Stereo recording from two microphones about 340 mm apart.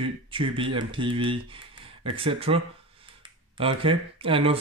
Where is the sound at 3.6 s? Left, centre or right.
Centre.